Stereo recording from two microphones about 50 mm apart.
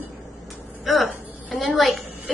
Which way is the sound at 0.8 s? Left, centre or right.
Centre.